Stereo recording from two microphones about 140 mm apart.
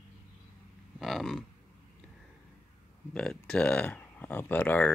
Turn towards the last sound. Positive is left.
turn(degrees=10)  # may be behind; listen again after turning